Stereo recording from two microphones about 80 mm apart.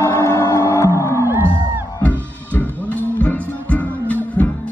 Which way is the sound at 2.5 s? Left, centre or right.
Left.